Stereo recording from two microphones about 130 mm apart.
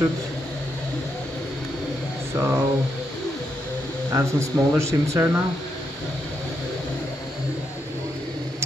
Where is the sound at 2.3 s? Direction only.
20° right (ahead or behind).